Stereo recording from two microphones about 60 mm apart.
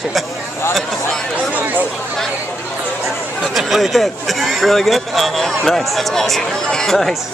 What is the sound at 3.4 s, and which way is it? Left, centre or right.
Speech, centre.